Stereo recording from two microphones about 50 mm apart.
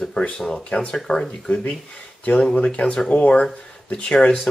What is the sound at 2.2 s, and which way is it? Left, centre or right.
Speech, left.